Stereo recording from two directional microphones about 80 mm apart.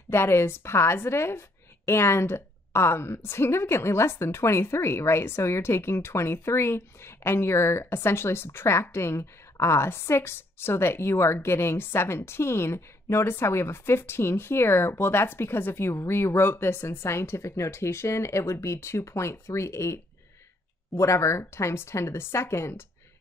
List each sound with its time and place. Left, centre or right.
0.1 s a woman's voice: left